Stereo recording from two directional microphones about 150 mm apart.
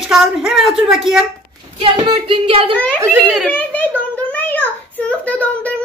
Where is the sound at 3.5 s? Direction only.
10° left (ahead or behind).